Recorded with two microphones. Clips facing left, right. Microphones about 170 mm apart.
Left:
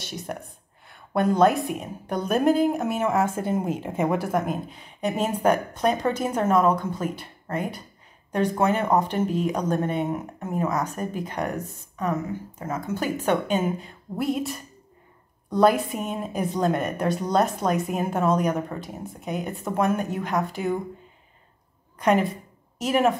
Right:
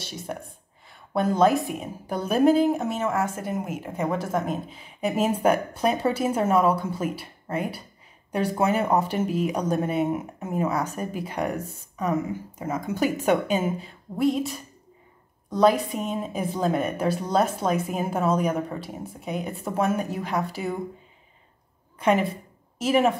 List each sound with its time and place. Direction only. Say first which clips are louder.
0.8 s speech: left 2 dB; centre (ahead or behind)
3.2 s speech: left 3 dB; 25° left (ahead or behind)
4.3 s a woman's voice: left 1 dB; centre (ahead or behind)
15.9 s speech: right 1 dB; centre (ahead or behind)
21.9 s a woman's voice: left 1 dB; centre (ahead or behind)